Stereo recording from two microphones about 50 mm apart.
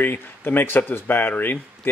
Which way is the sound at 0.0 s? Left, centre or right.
Left.